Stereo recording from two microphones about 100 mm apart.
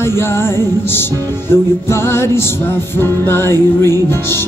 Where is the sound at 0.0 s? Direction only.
25° left (ahead or behind).